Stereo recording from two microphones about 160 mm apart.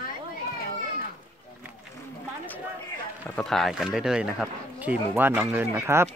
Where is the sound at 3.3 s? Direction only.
5° left (ahead or behind).